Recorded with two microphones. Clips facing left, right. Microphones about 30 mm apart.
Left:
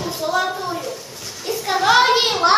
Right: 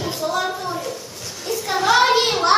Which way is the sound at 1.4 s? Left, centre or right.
Centre.